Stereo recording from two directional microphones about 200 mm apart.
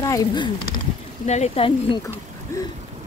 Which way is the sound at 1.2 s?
35° left (ahead or behind).